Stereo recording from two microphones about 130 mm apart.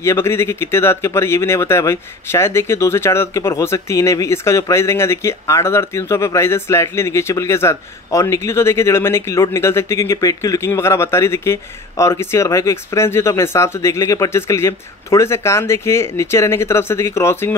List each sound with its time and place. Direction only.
0.0 s speech: 20° left (ahead or behind)